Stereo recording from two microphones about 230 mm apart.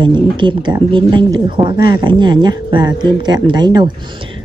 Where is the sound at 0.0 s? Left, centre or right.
Centre.